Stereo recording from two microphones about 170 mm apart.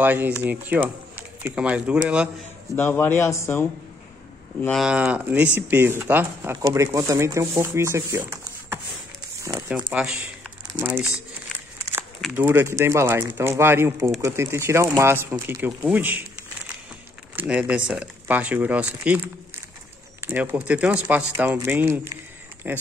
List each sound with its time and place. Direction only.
0.0 s speech: 10° right (ahead or behind)
2.7 s a man's voice: 10° left (ahead or behind)
4.8 s speech: 5° right (ahead or behind)
12.4 s speech: 10° right (ahead or behind)
17.4 s speech: 10° right (ahead or behind)